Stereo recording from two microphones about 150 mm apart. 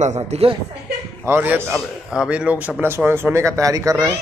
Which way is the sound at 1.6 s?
Centre (ahead or behind).